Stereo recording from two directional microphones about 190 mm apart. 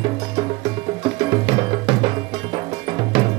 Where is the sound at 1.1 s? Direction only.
25° right (ahead or behind).